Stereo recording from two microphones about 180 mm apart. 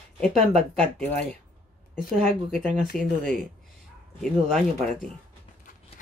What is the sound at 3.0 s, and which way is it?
Speech, 45° right (ahead or behind).